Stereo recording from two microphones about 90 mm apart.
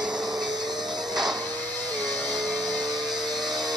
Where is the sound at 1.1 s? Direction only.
5° right (ahead or behind).